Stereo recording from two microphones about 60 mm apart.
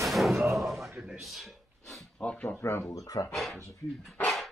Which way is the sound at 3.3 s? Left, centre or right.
Centre.